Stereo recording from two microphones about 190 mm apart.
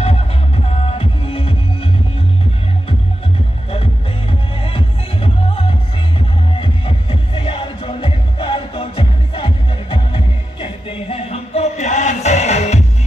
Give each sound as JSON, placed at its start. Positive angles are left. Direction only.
{"t": 0.8, "sound": "music", "side_deg": 30}
{"t": 3.7, "sound": "music", "side_deg": 30}